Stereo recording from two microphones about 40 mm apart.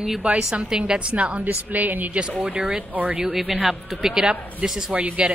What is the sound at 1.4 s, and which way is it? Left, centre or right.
Speech, right.